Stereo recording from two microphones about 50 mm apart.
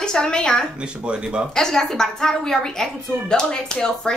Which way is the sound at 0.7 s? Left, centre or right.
Right.